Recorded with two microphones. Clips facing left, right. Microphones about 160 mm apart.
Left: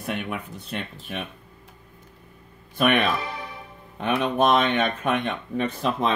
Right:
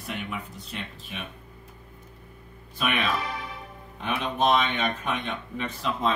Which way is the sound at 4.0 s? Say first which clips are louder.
Left 4 dB; 60° left (ahead or behind).